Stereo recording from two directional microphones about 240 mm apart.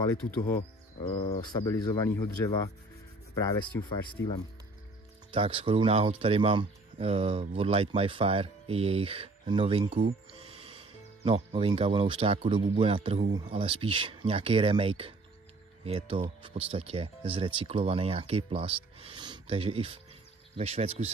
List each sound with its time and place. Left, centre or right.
0.0 s speech: centre
5.3 s speech: right